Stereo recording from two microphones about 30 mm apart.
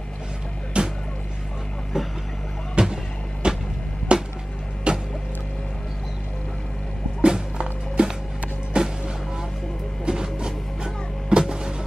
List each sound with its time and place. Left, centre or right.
0.8 s music: right
1.9 s vehicle: centre
2.8 s music: right
3.4 s a sound: right
4.9 s music: right
7.2 s music: right